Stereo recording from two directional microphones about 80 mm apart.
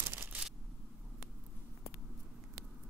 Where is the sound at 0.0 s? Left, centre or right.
Right.